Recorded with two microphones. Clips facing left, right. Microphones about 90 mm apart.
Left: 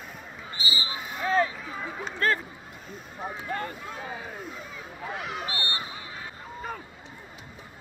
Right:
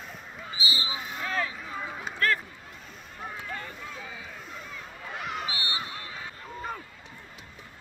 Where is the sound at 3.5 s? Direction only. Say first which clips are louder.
Left 5 dB; 45° left (ahead or behind).